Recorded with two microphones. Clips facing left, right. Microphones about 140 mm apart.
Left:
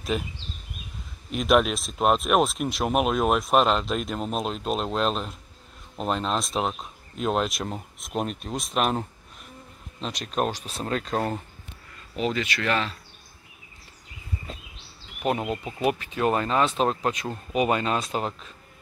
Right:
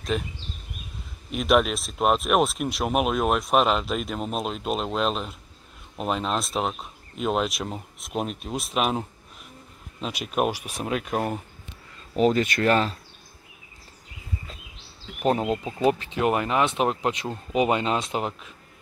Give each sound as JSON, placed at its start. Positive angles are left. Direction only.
{"t": 0.1, "sound": "speech", "side_deg": 5}
{"t": 1.3, "sound": "speech", "side_deg": 0}
{"t": 12.2, "sound": "speech", "side_deg": -45}
{"t": 15.2, "sound": "speech", "side_deg": -30}